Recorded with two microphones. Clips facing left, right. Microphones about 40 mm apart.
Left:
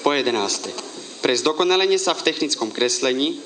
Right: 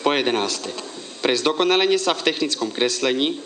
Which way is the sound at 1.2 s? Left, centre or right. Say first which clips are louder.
Left 1 dB; centre.